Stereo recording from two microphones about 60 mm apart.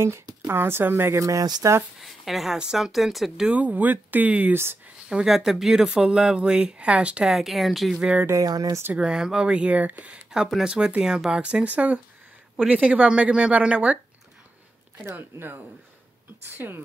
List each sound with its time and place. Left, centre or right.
0.5 s a woman's voice: right
1.2 s speech: right
2.0 s speech: centre
3.4 s speech: right
5.1 s speech: centre
7.2 s speech: centre
7.9 s speech: centre
8.3 s speech: right
8.9 s speech: centre
11.6 s speech: right
15.1 s a woman's voice: right